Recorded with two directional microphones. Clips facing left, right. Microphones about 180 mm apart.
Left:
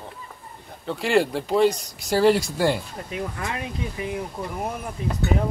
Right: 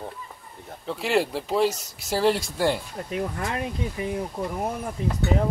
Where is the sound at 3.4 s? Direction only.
45° right (ahead or behind).